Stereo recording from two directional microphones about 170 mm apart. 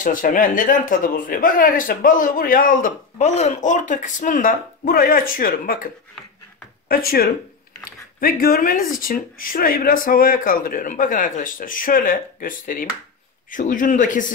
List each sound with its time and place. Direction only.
0.0 s speech: 50° left (ahead or behind)
6.9 s speech: 60° left (ahead or behind)